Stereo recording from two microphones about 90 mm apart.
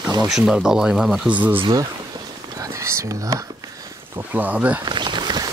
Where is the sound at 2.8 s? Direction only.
35° right (ahead or behind).